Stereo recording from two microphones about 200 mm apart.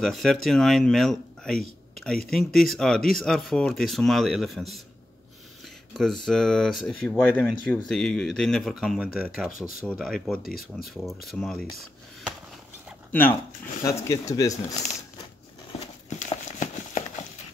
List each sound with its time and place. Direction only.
0.0 s speech: centre (ahead or behind)
5.9 s speech: centre (ahead or behind)
13.1 s speech: 10° left (ahead or behind)
16.2 s a sound: 35° left (ahead or behind)